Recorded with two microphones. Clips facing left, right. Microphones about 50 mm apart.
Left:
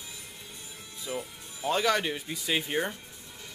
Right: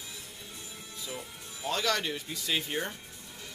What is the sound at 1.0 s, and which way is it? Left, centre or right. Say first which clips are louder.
A man's voice: left 6 dB; centre.